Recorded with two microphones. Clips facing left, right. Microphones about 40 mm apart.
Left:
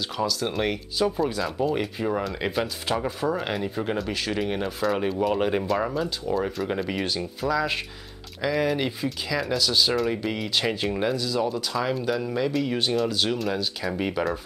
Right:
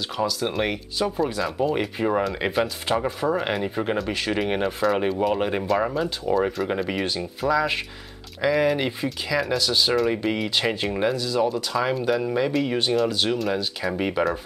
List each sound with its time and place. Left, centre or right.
0.2 s speech: centre
2.0 s speech: centre
2.4 s speech: centre
4.5 s speech: right
4.7 s speech: centre